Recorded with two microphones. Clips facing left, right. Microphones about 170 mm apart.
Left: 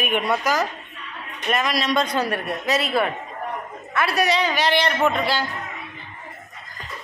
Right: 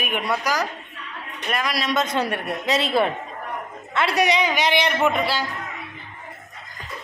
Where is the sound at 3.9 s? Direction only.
20° right (ahead or behind).